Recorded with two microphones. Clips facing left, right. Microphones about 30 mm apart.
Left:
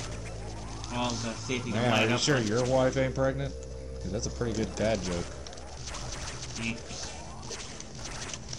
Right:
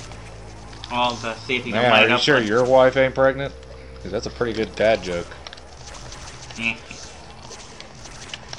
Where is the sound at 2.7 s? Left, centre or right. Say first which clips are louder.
Right 13 dB; right.